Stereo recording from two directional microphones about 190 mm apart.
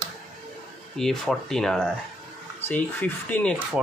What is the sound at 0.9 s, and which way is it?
Speech, centre (ahead or behind).